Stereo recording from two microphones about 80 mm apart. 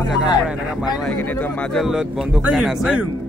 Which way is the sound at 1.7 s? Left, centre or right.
Centre.